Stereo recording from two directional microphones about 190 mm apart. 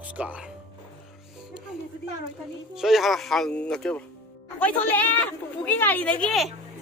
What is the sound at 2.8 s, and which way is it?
Speech, centre (ahead or behind).